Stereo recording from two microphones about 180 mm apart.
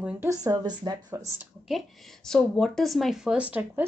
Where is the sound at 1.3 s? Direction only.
Centre (ahead or behind).